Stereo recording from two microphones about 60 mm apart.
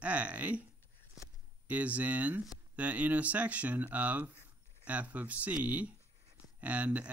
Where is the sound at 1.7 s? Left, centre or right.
Right.